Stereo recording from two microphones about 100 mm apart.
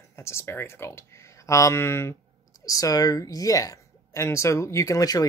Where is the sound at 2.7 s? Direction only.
35° left (ahead or behind).